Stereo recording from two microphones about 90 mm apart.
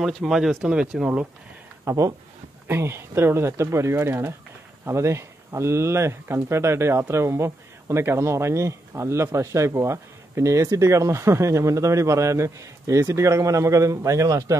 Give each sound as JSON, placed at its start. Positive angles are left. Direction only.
{"t": 0.0, "sound": "speech", "side_deg": -5}
{"t": 1.9, "sound": "speech", "side_deg": -40}
{"t": 2.7, "sound": "speech", "side_deg": -25}